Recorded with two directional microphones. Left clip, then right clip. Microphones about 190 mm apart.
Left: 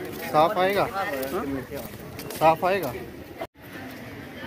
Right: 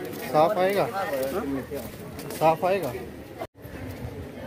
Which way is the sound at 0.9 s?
55° right (ahead or behind).